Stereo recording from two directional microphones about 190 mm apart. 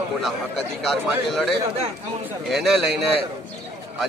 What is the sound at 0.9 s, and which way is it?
A man's voice, centre (ahead or behind).